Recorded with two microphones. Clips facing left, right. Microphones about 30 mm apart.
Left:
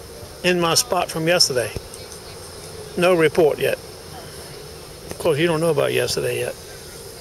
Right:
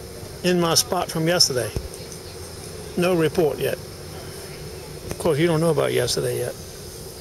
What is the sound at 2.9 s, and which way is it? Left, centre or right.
Speech, left.